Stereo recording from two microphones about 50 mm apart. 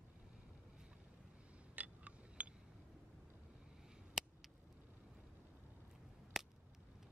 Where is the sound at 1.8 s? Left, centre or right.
Right.